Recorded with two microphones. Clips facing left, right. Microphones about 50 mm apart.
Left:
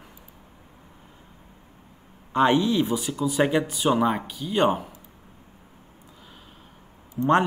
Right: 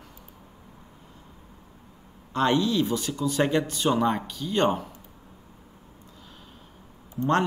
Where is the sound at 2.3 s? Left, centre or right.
Centre.